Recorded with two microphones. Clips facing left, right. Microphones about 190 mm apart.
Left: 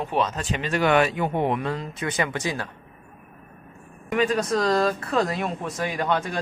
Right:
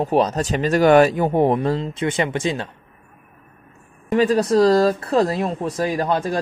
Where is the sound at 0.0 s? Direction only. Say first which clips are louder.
Right 7 dB; 40° right (ahead or behind).